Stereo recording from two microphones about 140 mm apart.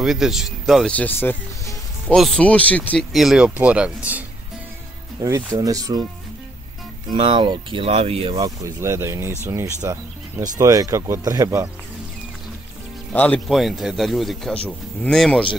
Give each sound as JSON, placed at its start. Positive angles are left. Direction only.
{"t": 0.0, "sound": "a man's voice", "side_deg": -5}
{"t": 0.9, "sound": "speech", "side_deg": 10}
{"t": 3.1, "sound": "speech", "side_deg": 0}
{"t": 5.2, "sound": "speech", "side_deg": -20}
{"t": 7.2, "sound": "speech", "side_deg": -35}
{"t": 8.4, "sound": "speech", "side_deg": -25}
{"t": 13.1, "sound": "speech", "side_deg": 10}
{"t": 13.6, "sound": "a man's voice", "side_deg": 0}